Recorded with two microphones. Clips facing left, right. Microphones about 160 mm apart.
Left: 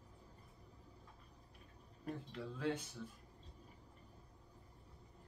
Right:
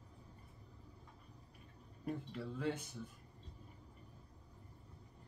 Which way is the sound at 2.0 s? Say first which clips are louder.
Right 3 dB; 10° right (ahead or behind).